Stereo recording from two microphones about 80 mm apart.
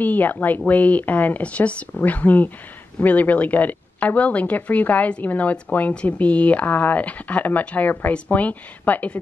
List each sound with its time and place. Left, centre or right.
0.0 s a woman's voice: left